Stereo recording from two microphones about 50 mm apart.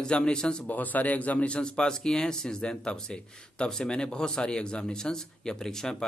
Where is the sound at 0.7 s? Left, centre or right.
Left.